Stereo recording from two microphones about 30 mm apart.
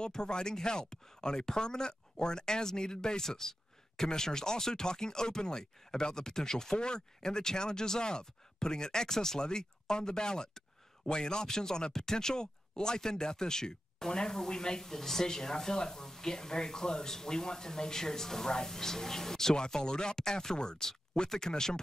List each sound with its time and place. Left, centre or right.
0.0 s speech: left
19.5 s speech: left